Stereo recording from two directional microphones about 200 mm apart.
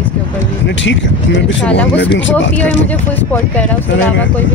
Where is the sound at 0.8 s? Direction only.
65° left (ahead or behind).